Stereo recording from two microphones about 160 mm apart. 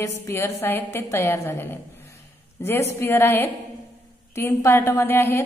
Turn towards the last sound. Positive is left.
turn(degrees=15)  # may be behind; listen again after turning